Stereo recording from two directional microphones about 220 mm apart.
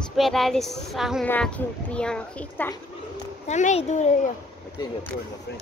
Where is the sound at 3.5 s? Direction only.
30° left (ahead or behind).